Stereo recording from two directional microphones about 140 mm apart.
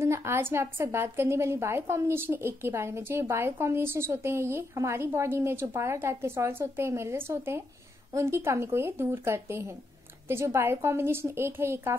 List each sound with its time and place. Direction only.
0.0 s a woman's voice: 20° right (ahead or behind)